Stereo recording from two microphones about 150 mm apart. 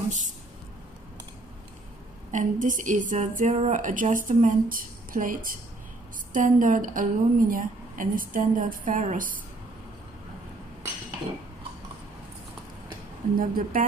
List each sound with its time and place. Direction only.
2.3 s a woman's voice: 60° right (ahead or behind)
13.3 s speech: 70° right (ahead or behind)